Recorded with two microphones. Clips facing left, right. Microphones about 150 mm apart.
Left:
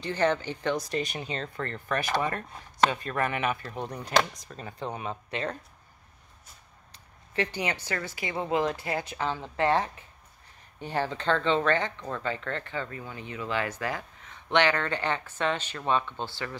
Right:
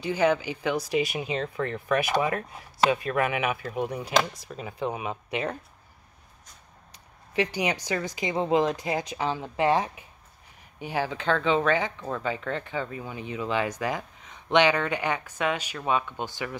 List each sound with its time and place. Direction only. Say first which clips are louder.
0.0 s speech: right 3 dB; 10° right (ahead or behind)
6.9 s speech: right 3 dB; 15° right (ahead or behind)